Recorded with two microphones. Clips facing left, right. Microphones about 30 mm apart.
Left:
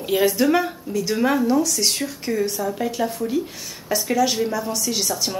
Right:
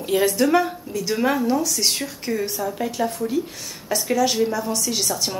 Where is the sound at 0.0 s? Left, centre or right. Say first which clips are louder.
Left 1 dB; centre.